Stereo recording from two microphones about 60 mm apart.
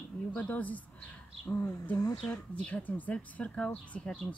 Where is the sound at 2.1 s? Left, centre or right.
Centre.